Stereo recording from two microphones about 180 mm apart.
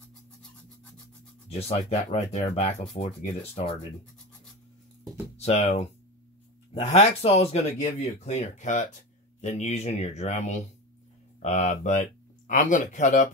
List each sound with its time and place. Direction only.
0.4 s rub: 5° left (ahead or behind)
1.5 s speech: 35° left (ahead or behind)
5.4 s speech: 35° left (ahead or behind)